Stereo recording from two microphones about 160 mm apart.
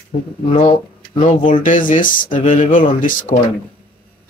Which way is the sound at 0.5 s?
45° left (ahead or behind).